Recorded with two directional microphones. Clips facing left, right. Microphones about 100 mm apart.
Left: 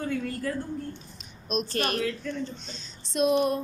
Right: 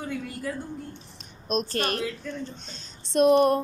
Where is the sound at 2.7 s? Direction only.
50° right (ahead or behind).